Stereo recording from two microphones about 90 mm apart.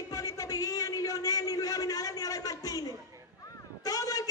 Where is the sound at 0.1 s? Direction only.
40° left (ahead or behind).